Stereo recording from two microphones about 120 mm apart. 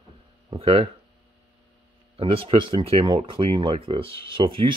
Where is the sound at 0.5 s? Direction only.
50° right (ahead or behind).